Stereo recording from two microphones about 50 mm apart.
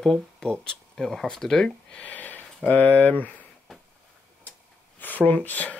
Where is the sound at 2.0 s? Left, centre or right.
Left.